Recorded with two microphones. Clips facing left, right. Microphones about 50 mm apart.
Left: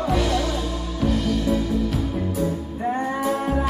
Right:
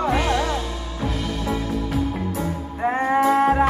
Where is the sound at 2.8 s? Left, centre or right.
Right.